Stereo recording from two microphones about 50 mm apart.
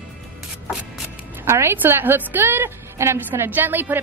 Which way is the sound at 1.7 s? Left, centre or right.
Right.